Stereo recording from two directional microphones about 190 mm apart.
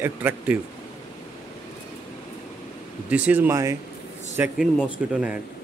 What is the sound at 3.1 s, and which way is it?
A man's voice, 10° right (ahead or behind).